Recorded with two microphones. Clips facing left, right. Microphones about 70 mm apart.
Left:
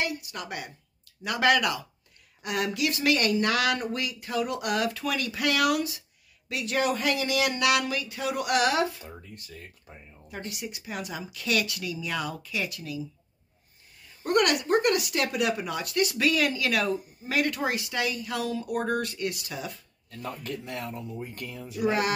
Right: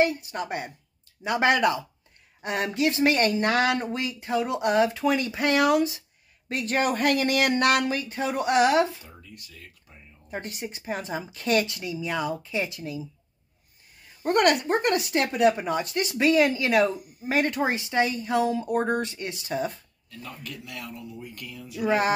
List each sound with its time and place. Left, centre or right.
0.0 s speech: right
6.5 s speech: right
9.0 s speech: left
10.3 s speech: right
14.2 s speech: right
20.1 s speech: left
21.8 s speech: right